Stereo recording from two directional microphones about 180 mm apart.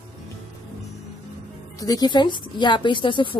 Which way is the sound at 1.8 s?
20° left (ahead or behind).